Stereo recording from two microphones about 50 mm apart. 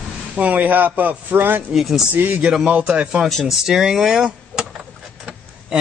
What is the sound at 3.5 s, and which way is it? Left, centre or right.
Speech, centre.